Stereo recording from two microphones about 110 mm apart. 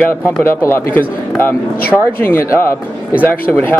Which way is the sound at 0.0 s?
20° left (ahead or behind).